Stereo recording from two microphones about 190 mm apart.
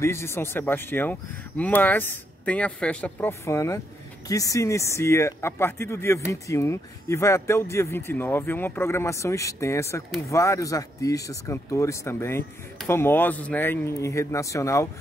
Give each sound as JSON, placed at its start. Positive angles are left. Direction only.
{"t": 0.0, "sound": "speech", "side_deg": 15}